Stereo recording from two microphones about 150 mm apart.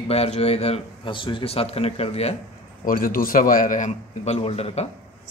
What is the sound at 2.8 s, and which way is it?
A man's voice, 70° left (ahead or behind).